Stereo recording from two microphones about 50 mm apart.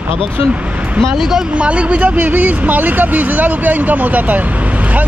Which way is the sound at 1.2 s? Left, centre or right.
Centre.